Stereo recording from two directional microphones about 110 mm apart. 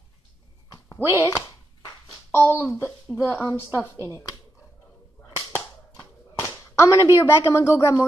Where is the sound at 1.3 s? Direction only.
25° left (ahead or behind).